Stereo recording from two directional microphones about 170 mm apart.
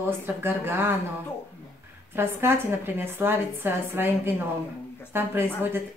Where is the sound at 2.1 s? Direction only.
15° right (ahead or behind).